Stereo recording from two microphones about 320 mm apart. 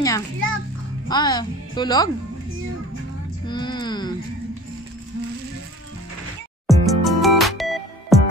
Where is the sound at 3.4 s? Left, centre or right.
Centre.